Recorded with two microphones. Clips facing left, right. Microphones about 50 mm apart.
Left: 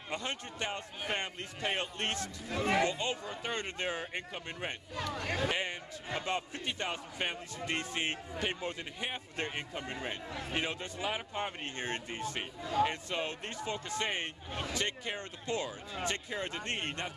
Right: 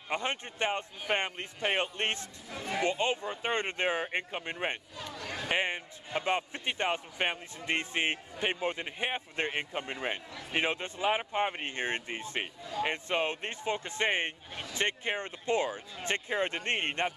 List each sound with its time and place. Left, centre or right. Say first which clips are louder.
0.1 s speech: right 5 dB; right
2.1 s speech: left 5 dB; left
2.8 s speech: right 3 dB; right
4.9 s chatter: left 4 dB; left
5.5 s speech: right 4 dB; right